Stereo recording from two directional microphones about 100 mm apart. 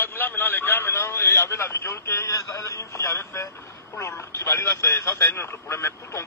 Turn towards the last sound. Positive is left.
turn(degrees=25)  # may be behind; listen again after turning